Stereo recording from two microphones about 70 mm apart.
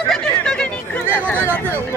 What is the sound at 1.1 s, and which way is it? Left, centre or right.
Speech, left.